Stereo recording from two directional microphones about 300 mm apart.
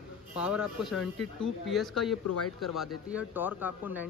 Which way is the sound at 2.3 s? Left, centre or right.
Left.